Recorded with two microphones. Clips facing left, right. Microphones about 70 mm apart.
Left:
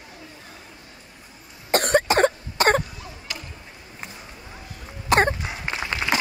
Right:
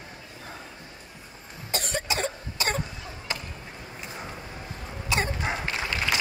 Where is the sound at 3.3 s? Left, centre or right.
Right.